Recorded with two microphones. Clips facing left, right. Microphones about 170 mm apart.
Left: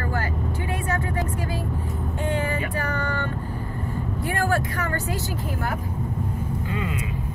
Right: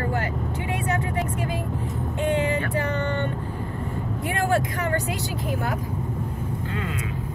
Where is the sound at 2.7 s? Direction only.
20° right (ahead or behind).